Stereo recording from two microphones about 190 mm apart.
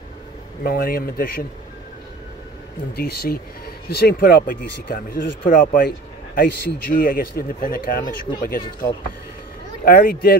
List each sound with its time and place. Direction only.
0.7 s speech: 50° left (ahead or behind)
3.0 s speech: 55° left (ahead or behind)